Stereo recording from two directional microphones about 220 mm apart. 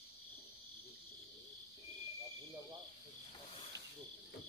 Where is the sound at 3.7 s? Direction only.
50° right (ahead or behind).